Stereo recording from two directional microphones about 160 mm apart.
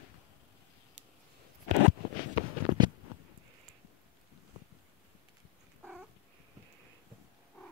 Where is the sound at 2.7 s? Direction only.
30° right (ahead or behind).